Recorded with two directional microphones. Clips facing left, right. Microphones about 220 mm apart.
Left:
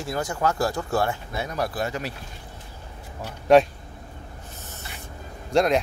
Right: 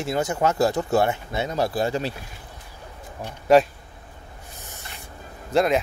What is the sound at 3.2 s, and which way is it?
Speech, centre (ahead or behind).